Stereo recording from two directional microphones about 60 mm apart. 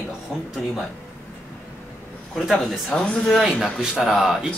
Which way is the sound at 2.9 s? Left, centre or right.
Centre.